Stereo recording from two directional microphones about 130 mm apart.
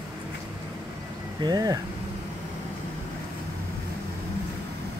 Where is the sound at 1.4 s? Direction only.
30° right (ahead or behind).